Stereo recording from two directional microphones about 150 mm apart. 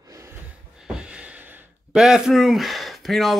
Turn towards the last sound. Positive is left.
turn(degrees=0)  # may be behind; listen again after turning